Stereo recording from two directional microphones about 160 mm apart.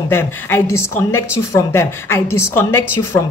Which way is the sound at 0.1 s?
15° left (ahead or behind).